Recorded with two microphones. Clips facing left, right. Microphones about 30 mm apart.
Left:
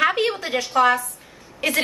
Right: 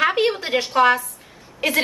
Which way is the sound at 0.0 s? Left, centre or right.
Centre.